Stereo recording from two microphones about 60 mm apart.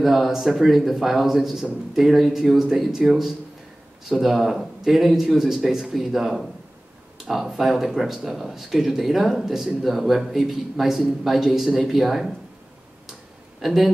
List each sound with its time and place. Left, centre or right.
0.0 s a man's voice: centre
13.6 s speech: centre